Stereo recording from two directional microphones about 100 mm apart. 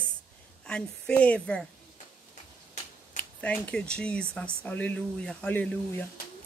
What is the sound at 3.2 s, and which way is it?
A woman's voice, 15° left (ahead or behind).